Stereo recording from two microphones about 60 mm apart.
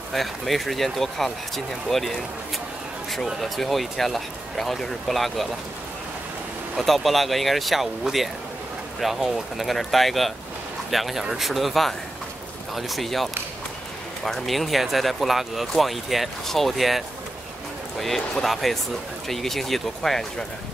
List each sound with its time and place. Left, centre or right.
0.1 s speech: centre
6.8 s speech: centre